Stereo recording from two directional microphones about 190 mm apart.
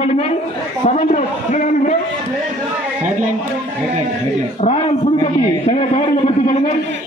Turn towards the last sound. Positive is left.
turn(degrees=35)  # may be behind; listen again after turning